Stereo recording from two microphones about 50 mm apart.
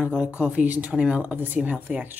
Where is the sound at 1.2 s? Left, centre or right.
Right.